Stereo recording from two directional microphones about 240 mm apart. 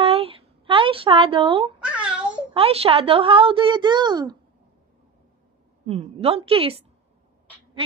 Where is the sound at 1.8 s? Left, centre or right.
Centre.